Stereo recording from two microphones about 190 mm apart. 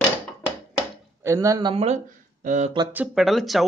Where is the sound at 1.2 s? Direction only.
15° right (ahead or behind).